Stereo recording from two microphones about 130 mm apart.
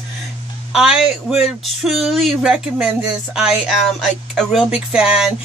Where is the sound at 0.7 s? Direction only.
5° right (ahead or behind).